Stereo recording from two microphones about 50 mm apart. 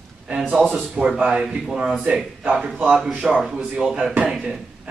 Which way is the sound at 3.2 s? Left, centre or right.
Right.